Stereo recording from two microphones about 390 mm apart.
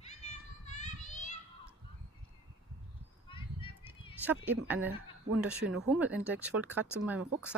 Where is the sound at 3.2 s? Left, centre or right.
Centre.